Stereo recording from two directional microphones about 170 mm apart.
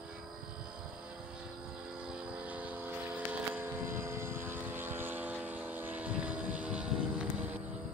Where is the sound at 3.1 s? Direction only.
10° right (ahead or behind).